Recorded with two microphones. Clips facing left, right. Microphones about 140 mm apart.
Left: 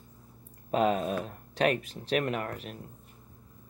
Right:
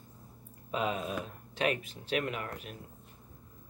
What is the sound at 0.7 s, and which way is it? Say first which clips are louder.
Speech: left 7 dB; 45° left (ahead or behind).